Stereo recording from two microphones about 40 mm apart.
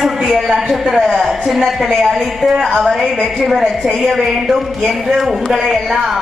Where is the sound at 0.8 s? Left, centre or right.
Centre.